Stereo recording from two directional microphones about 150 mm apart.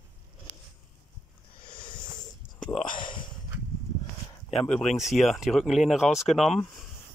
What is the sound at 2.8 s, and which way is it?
Speech, 35° left (ahead or behind).